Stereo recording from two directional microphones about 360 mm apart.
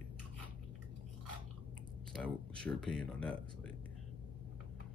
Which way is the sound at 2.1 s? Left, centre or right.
Centre.